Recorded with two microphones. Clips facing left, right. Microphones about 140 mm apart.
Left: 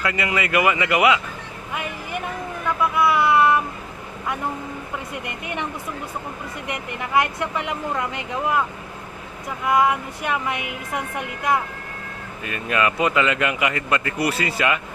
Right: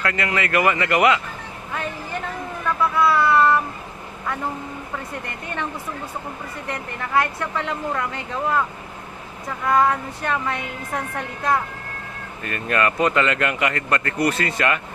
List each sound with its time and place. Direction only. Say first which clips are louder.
0.0 s speech: even; 10° left (ahead or behind)
4.9 s speech: even; 15° left (ahead or behind)
6.7 s speech: even; 15° left (ahead or behind)
9.7 s speech: even; 15° left (ahead or behind)